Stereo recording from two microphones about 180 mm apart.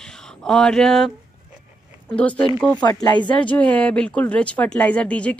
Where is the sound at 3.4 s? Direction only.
10° left (ahead or behind).